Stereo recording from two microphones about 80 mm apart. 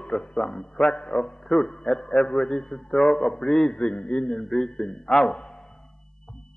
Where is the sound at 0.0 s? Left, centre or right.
Centre.